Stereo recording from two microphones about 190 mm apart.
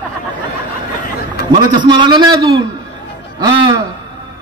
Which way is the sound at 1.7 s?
25° right (ahead or behind).